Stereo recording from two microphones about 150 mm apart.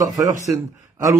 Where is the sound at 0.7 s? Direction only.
20° right (ahead or behind).